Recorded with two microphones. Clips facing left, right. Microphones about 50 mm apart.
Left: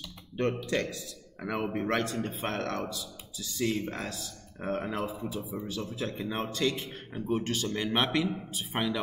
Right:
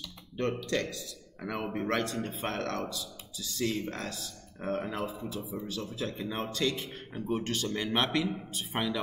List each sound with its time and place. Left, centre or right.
0.6 s a man's voice: centre